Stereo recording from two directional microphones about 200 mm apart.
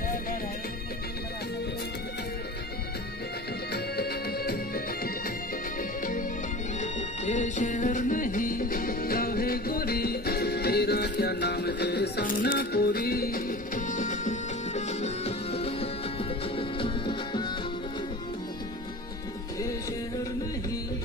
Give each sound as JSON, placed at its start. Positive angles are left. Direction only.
{"t": 3.7, "sound": "music", "side_deg": 50}